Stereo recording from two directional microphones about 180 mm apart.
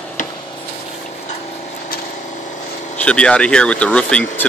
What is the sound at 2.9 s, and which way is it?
Speech, 5° left (ahead or behind).